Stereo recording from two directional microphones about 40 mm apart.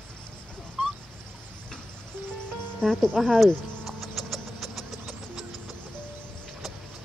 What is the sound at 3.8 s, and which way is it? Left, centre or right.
Vehicle, centre.